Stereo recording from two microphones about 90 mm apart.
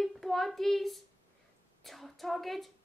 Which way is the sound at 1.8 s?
Centre (ahead or behind).